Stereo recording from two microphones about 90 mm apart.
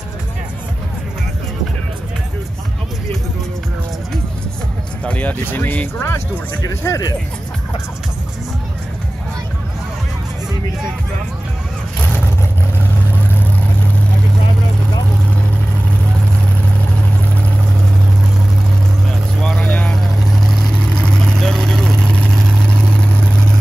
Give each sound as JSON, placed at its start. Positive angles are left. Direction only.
{"t": 5.0, "sound": "speech", "side_deg": 15}
{"t": 19.4, "sound": "vehicle", "side_deg": 5}
{"t": 19.7, "sound": "vehicle", "side_deg": 15}
{"t": 20.3, "sound": "vehicle", "side_deg": 5}